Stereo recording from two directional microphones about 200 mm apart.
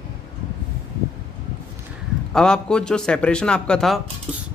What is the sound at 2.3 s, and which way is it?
A man's voice, 5° left (ahead or behind).